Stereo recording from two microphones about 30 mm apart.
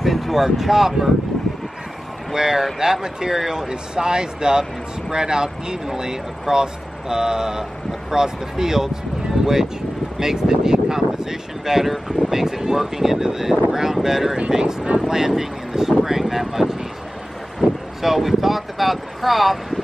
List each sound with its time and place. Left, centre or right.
0.0 s speech: centre
2.3 s speech: centre
10.1 s speech: centre
12.3 s a sound: centre
12.6 s speech: centre
16.0 s speech: centre